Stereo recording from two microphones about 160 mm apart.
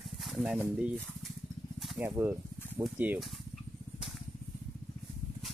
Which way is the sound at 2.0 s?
15° right (ahead or behind).